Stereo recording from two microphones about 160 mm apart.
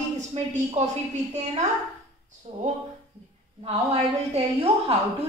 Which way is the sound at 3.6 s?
40° right (ahead or behind).